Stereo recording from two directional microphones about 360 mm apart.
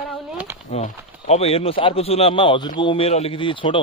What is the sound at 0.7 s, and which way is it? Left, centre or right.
Speech, centre.